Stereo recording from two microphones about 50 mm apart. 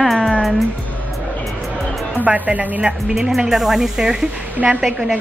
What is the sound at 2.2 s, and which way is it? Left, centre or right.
Speech, right.